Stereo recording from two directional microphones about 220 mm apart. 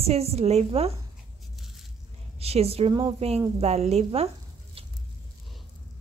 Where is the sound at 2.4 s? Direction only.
25° right (ahead or behind).